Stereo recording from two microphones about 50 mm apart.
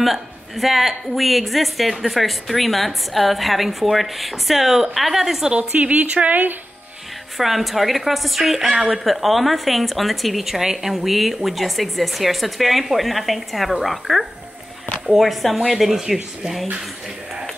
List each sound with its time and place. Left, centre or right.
0.0 s a woman's voice: centre
5.5 s a woman's voice: right
7.3 s a woman's voice: centre